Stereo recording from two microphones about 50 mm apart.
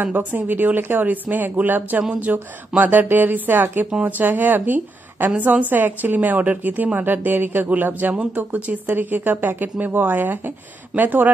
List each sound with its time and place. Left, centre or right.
0.0 s a woman's voice: right
8.8 s a woman's voice: right